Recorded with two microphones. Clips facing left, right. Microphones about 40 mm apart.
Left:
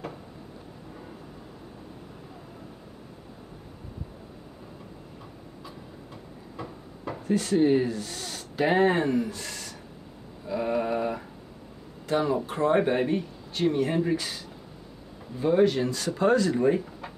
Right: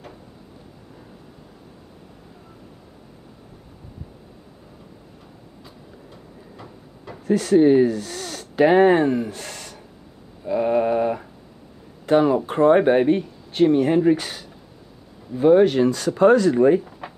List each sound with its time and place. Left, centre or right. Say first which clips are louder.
7.2 s speech: right 7 dB; right
10.4 s mantra: right 8 dB; right
12.1 s speech: right 8 dB; right